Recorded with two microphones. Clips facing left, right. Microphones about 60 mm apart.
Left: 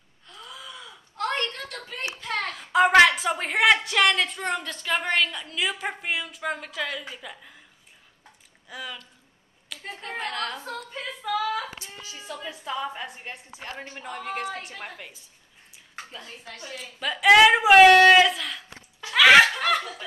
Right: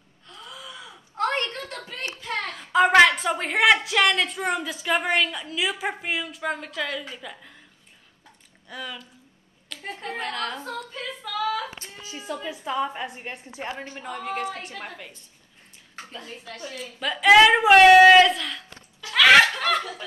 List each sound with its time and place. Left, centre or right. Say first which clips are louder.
0.3 s gasp: right 1 dB; centre
1.1 s a sound: right 2 dB; right
2.4 s a woman's voice: right 1 dB; centre
8.6 s a woman's voice: right 1 dB; centre
9.7 s a sound: right 1 dB; centre
10.1 s a woman's voice: even; centre
12.2 s a woman's voice: right 5 dB; centre
13.7 s a woman's voice: right 2 dB; centre
15.7 s a sound: right 1 dB; centre
16.6 s a woman's voice: right 1 dB; centre
18.7 s a sound: even; left
19.1 s snicker: even; centre